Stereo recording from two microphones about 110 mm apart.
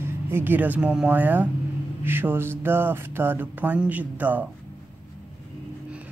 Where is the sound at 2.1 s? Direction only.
20° right (ahead or behind).